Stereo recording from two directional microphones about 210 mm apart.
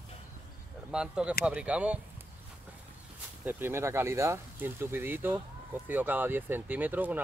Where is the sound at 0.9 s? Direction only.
5° right (ahead or behind).